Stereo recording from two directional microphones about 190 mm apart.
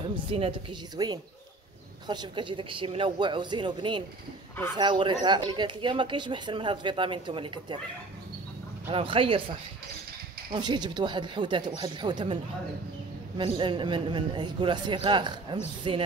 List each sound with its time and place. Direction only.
0.0 s speech: 25° right (ahead or behind)
8.9 s speech: 30° right (ahead or behind)
13.4 s speech: 25° right (ahead or behind)